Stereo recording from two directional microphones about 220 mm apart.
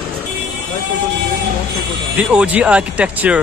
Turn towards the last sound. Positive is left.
turn(degrees=-5)  # may be behind; listen again after turning